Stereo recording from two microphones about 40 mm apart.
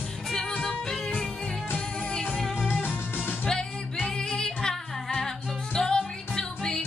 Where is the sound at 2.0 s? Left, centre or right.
Left.